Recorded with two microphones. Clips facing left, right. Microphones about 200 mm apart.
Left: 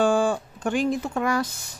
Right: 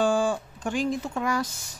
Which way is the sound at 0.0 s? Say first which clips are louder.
Left 3 dB; 60° left (ahead or behind).